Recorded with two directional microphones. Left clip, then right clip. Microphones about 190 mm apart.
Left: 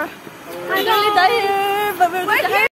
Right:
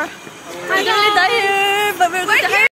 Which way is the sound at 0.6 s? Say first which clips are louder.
Right 2 dB; 10° right (ahead or behind).